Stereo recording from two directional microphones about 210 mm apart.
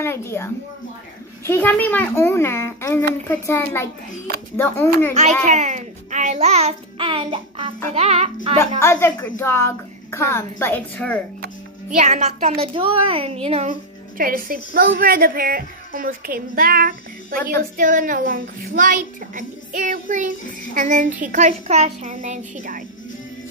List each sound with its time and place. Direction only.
0.0 s a child's voice: 10° left (ahead or behind)
5.4 s a child's voice: 35° right (ahead or behind)
7.9 s child singing: 30° right (ahead or behind)
8.5 s a child's voice: 15° left (ahead or behind)
12.0 s a woman's voice: 35° right (ahead or behind)